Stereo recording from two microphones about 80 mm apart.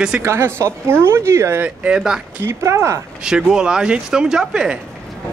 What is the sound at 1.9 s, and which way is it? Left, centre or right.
Speech, centre.